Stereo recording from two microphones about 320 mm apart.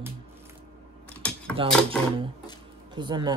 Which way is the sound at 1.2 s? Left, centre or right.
Centre.